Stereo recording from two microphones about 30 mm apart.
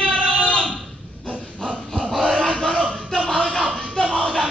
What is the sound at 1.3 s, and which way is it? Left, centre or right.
Dog, left.